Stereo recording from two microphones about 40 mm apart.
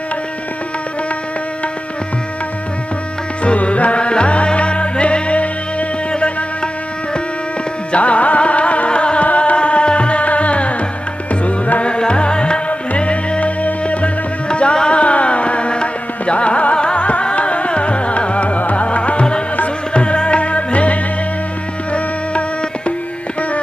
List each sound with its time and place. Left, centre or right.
3.4 s music: left
7.9 s music: left